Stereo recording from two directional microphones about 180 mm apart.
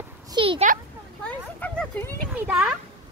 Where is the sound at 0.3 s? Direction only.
30° right (ahead or behind).